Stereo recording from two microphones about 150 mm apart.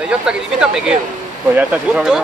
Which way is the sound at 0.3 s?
5° right (ahead or behind).